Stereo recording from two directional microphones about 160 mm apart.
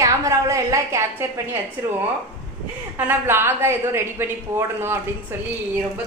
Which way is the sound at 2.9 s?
15° right (ahead or behind).